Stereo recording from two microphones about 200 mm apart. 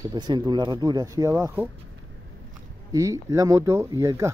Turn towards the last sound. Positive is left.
turn(degrees=-15)  # may be behind; listen again after turning